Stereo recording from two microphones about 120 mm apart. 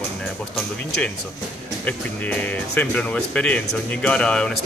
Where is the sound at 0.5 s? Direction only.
5° left (ahead or behind).